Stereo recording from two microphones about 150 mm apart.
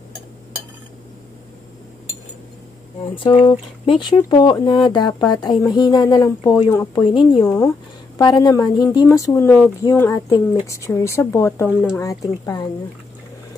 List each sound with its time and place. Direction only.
3.3 s speech: 35° left (ahead or behind); by 7.1 s 15° left (ahead or behind)
8.2 s speech: 25° left (ahead or behind)